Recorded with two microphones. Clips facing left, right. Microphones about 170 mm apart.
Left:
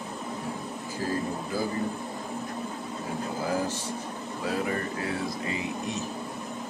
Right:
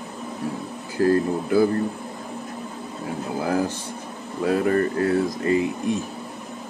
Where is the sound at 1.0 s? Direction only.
65° right (ahead or behind).